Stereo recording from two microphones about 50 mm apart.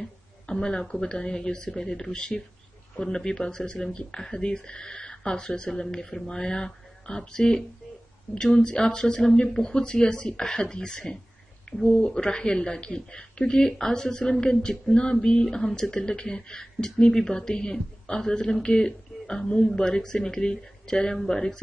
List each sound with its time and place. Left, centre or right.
0.5 s a woman's voice: centre